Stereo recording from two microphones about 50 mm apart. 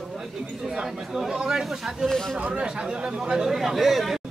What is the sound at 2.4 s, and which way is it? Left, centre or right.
Speech, right.